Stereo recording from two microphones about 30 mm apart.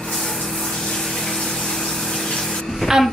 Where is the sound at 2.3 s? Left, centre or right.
Centre.